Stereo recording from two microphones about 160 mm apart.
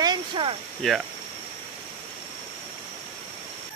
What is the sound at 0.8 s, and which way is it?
Speech, centre (ahead or behind).